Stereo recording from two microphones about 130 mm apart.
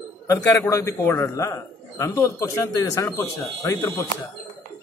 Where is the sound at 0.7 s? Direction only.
20° left (ahead or behind).